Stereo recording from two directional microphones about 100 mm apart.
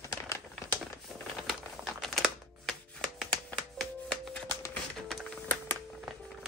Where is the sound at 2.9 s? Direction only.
10° left (ahead or behind).